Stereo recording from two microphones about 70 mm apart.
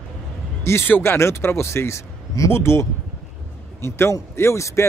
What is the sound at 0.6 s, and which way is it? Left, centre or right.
A man's voice, left.